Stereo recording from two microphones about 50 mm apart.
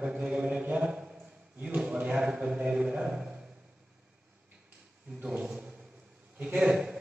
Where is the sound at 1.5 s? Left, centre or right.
Right.